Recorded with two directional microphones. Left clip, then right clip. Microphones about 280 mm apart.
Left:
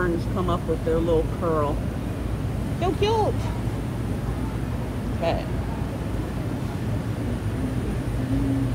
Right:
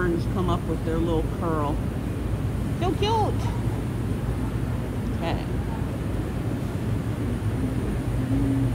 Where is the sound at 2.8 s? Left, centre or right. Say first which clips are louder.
Left 2 dB; centre.